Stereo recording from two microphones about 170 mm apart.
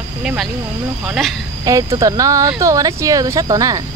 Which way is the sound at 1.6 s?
20° right (ahead or behind).